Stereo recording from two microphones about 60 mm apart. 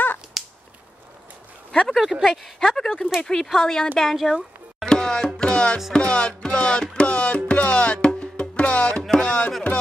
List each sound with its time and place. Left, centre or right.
0.4 s finger snapping: centre
1.7 s speech: centre
3.2 s music: centre
4.0 s speech: centre
4.8 s music: centre